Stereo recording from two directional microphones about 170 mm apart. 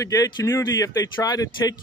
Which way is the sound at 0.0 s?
20° left (ahead or behind).